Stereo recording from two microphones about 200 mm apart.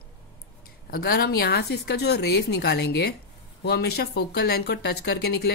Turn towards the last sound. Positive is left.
turn(degrees=55)  # may be behind; listen again after turning